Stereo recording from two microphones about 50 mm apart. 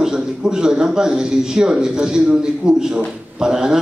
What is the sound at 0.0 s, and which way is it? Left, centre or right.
A man's voice, centre.